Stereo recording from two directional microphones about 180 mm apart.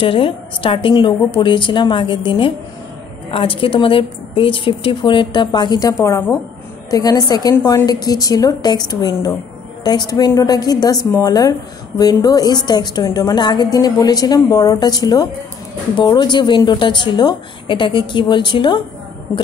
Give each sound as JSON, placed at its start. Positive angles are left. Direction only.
{"t": 0.0, "sound": "a woman's voice", "side_deg": 30}